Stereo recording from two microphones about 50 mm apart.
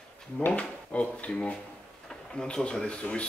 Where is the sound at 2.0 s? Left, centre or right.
Centre.